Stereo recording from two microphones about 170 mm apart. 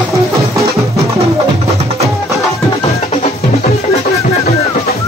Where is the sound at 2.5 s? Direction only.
35° left (ahead or behind).